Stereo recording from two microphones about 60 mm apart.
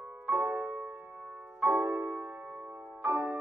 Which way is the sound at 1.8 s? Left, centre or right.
Right.